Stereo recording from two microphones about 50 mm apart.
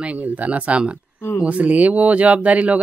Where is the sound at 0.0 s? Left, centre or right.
Right.